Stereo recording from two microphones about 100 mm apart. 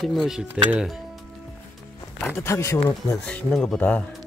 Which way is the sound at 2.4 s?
30° left (ahead or behind).